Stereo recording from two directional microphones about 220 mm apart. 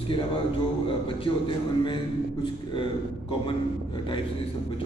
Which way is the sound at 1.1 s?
25° left (ahead or behind).